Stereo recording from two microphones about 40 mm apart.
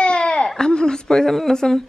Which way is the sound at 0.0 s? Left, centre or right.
Left.